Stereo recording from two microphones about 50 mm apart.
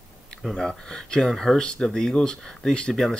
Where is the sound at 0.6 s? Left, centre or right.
Centre.